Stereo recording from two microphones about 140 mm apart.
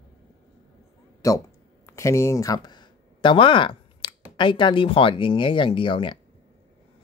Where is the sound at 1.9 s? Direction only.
20° left (ahead or behind); by 4.1 s 35° left (ahead or behind).